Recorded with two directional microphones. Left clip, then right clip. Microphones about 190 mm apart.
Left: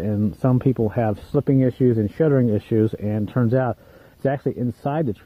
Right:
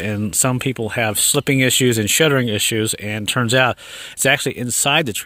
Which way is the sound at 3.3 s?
30° right (ahead or behind).